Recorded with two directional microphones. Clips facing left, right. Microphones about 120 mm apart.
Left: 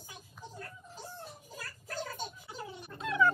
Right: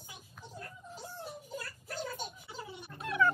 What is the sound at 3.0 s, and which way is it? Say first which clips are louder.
Cat: left 1 dB; 15° left (ahead or behind).